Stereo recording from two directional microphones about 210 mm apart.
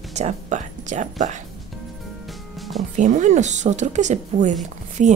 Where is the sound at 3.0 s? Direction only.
35° right (ahead or behind).